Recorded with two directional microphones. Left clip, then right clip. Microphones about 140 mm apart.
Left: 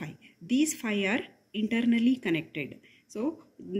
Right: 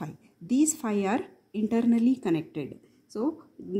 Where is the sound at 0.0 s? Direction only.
50° right (ahead or behind).